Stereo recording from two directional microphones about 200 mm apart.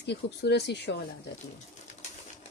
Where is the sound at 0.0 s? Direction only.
55° left (ahead or behind).